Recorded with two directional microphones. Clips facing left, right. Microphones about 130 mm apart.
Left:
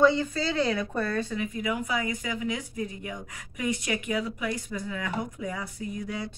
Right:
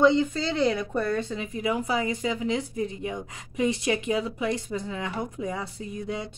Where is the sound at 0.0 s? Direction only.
20° right (ahead or behind).